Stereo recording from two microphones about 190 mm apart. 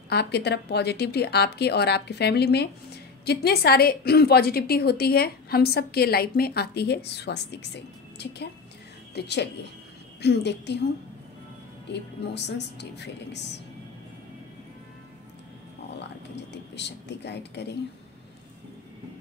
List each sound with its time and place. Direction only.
0.1 s a woman's voice: 60° left (ahead or behind)
11.9 s a woman's voice: 65° left (ahead or behind)
16.7 s a woman's voice: 65° left (ahead or behind)